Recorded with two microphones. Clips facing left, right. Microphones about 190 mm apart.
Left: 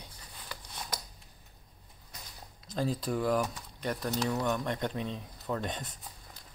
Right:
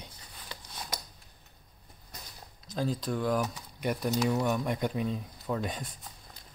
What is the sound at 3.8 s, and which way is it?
Speech, 15° right (ahead or behind).